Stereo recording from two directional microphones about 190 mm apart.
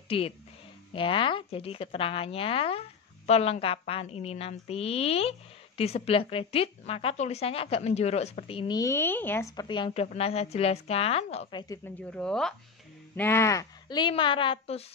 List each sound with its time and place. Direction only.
0.1 s speech: 30° left (ahead or behind)
12.1 s speech: 5° left (ahead or behind); by 14.9 s 30° left (ahead or behind)